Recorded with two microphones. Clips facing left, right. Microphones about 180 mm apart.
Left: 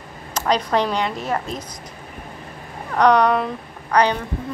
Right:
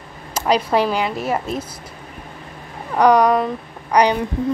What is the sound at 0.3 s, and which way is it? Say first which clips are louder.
Speech: right 2 dB; 10° right (ahead or behind).